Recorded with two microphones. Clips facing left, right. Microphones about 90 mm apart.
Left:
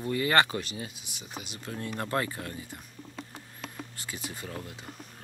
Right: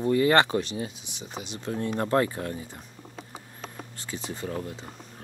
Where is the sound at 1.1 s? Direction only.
10° left (ahead or behind).